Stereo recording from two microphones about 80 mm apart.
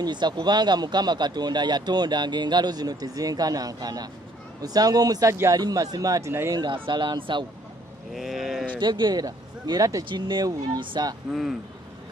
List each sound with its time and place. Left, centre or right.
0.0 s a man's voice: right
6.5 s speech: right
8.1 s speech: centre
8.7 s speech: right
10.0 s speech: right